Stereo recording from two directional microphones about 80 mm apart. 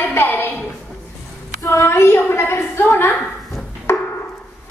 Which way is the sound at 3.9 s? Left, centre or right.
Left.